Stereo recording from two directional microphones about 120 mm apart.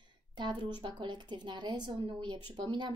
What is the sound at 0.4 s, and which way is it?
A woman's voice, 40° right (ahead or behind).